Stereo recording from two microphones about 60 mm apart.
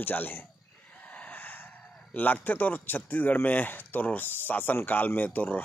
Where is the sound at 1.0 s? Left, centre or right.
Left.